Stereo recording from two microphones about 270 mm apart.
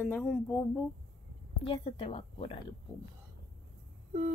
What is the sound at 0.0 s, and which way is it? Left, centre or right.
Speech, centre.